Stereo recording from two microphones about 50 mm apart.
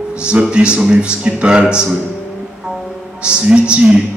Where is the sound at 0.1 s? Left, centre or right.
Right.